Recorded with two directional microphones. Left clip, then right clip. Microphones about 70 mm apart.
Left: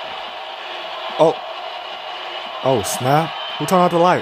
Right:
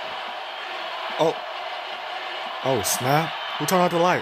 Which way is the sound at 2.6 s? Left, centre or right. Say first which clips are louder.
Left 5 dB; left.